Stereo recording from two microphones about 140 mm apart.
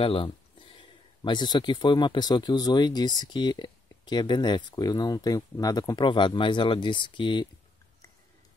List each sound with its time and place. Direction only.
0.0 s speech: 40° left (ahead or behind)